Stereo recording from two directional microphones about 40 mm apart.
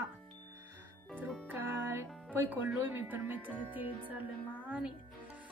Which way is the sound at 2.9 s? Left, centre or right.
Right.